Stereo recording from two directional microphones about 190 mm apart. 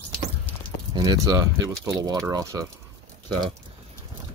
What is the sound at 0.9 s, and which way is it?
Speech, 20° right (ahead or behind).